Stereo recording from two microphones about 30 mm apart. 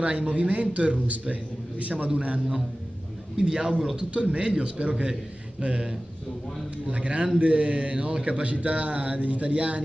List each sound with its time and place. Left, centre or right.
0.0 s a man's voice: right
3.3 s a man's voice: right
4.1 s a man's voice: right
6.9 s a man's voice: right